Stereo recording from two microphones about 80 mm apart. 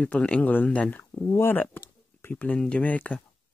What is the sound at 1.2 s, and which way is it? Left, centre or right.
Speech, left.